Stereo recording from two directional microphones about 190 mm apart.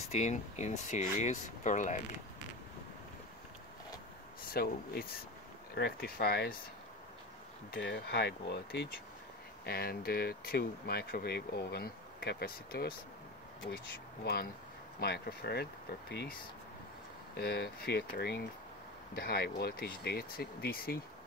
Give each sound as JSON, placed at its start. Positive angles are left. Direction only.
{"t": 0.1, "sound": "speech", "side_deg": 35}
{"t": 4.5, "sound": "speech", "side_deg": 50}
{"t": 7.7, "sound": "speech", "side_deg": 60}
{"t": 14.2, "sound": "speech", "side_deg": 55}
{"t": 17.4, "sound": "speech", "side_deg": 55}